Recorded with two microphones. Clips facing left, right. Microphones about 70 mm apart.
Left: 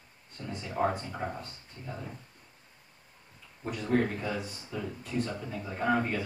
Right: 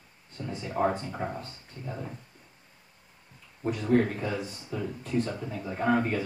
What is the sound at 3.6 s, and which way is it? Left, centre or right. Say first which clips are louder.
Speech: right 4 dB; centre.